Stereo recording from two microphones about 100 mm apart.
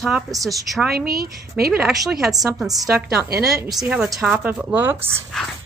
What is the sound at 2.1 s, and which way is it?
A woman's voice, 5° right (ahead or behind).